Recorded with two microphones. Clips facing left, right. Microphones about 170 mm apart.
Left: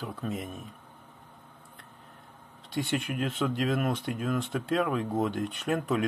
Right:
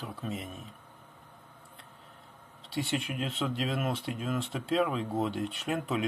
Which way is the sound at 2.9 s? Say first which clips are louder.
Left 4 dB; 55° left (ahead or behind).